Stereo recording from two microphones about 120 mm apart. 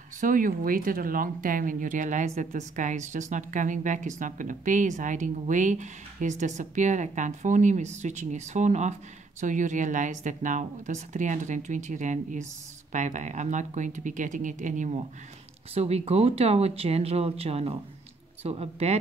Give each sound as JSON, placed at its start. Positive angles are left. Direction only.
{"t": 0.2, "sound": "speech", "side_deg": -90}
{"t": 1.7, "sound": "speech", "side_deg": -90}
{"t": 9.4, "sound": "speech", "side_deg": -90}
{"t": 15.7, "sound": "speech", "side_deg": -60}